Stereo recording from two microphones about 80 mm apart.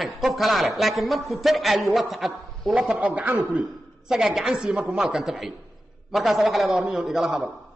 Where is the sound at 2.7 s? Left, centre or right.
Centre.